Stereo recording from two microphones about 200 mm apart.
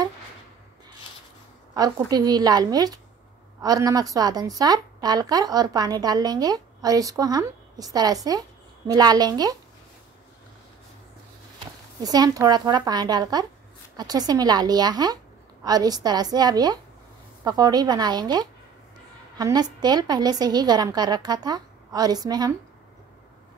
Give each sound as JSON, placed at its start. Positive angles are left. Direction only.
{"t": 1.7, "sound": "a woman's voice", "side_deg": -20}
{"t": 12.0, "sound": "a woman's voice", "side_deg": -20}